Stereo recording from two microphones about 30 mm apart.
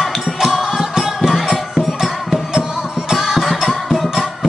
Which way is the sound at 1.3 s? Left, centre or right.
Centre.